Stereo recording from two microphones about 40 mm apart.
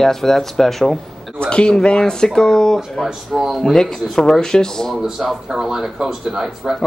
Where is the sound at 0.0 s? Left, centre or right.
Centre.